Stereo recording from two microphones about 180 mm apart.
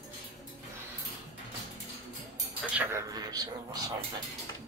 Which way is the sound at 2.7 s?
15° right (ahead or behind).